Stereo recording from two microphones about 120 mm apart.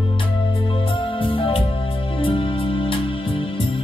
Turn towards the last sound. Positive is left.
turn(degrees=50)  # may be behind; listen again after turning